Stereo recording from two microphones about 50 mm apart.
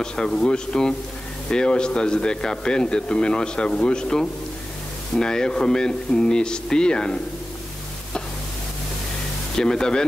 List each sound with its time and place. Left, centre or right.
0.0 s speech: centre
9.6 s speech: centre